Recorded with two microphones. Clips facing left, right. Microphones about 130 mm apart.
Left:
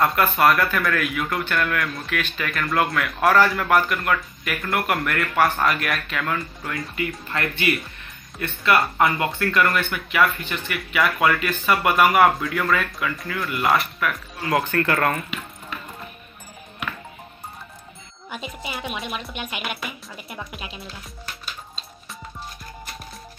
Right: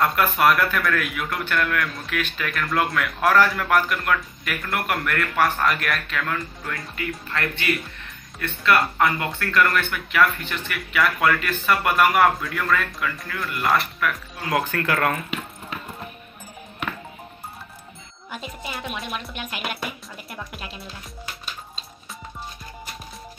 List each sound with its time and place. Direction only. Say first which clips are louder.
0.0 s speech: left 1 dB; centre (ahead or behind)
18.3 s speech: left 1 dB; 5° left (ahead or behind)